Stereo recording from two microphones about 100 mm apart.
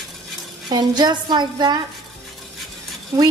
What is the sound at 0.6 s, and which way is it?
Music, 45° right (ahead or behind).